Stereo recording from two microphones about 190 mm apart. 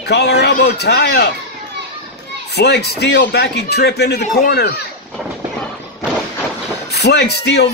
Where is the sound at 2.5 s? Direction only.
60° left (ahead or behind).